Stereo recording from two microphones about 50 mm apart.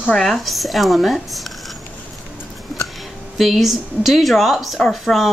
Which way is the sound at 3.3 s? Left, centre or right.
Centre.